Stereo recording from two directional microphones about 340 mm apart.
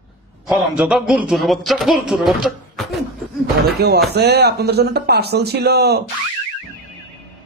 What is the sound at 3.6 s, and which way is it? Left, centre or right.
Speech, right.